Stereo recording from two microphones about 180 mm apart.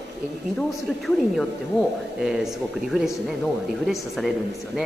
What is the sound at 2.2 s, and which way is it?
Speech, 5° right (ahead or behind).